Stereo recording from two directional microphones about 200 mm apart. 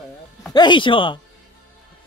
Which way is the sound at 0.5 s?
20° left (ahead or behind).